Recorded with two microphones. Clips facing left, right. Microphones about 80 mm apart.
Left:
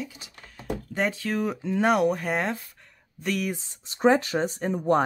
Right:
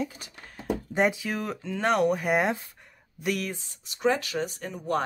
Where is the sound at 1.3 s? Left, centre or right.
Centre.